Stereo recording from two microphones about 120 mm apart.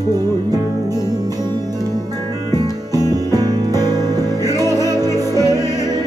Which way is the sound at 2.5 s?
35° right (ahead or behind).